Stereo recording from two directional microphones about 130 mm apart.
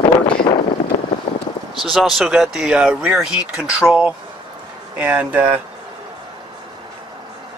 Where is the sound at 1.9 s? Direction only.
Centre (ahead or behind).